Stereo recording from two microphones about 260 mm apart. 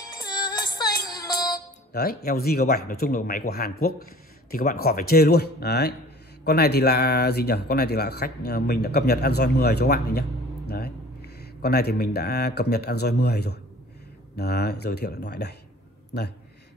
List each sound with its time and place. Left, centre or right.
0.0 s music: centre
1.9 s speech: left
11.6 s speech: left